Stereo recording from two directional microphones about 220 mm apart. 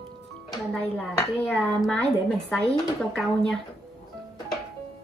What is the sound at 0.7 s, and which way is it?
A woman's voice, 5° left (ahead or behind).